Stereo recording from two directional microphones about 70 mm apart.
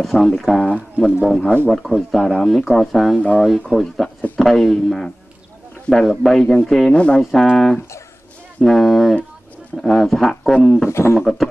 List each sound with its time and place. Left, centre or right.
0.0 s speech: centre
6.9 s speech: centre
7.2 s speech: centre
10.9 s speech: left
11.1 s speech: centre